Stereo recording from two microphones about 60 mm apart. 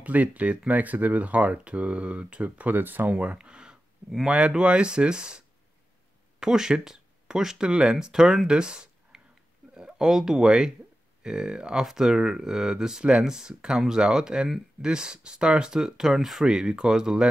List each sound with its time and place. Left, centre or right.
0.0 s speech: right
3.3 s a sound: centre
4.3 s speech: centre
6.4 s speech: centre
8.5 s a sound: centre
9.8 s speech: centre